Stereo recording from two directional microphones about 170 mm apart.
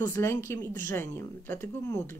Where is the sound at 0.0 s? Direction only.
15° left (ahead or behind).